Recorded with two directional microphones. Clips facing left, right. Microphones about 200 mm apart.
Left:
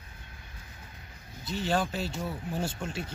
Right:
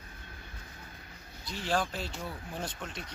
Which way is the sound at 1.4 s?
Centre (ahead or behind).